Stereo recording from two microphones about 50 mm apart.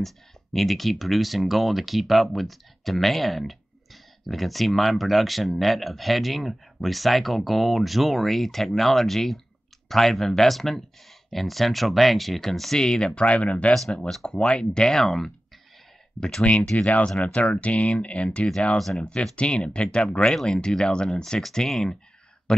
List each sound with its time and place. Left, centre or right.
0.0 s speech: centre; by 13.7 s left
14.0 s speech: centre
16.7 s speech: left
18.8 s speech: centre
19.3 s speech: left
20.2 s speech: centre